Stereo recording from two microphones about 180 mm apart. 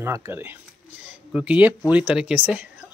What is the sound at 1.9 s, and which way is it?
Speech, 10° right (ahead or behind).